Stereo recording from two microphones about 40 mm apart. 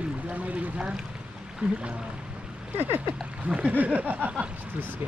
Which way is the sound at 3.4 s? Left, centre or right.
Right.